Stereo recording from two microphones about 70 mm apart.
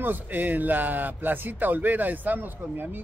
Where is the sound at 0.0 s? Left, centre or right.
Right.